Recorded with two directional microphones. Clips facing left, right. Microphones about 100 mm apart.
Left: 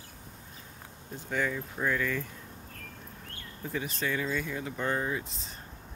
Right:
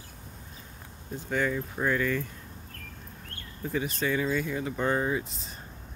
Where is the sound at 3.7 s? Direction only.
5° right (ahead or behind).